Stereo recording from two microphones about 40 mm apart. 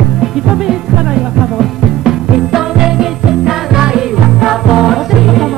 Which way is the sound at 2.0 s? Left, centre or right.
Centre.